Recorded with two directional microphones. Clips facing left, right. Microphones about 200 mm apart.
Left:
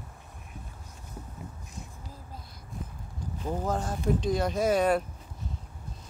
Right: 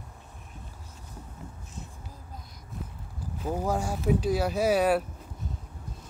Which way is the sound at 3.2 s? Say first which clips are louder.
Right 1 dB; 5° right (ahead or behind).